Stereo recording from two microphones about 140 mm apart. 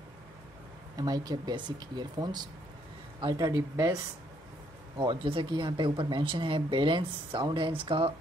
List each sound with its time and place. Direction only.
0.9 s speech: 25° right (ahead or behind)
4.9 s speech: 35° right (ahead or behind)